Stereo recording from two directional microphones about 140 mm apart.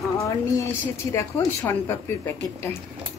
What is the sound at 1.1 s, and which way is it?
Speech, 20° left (ahead or behind).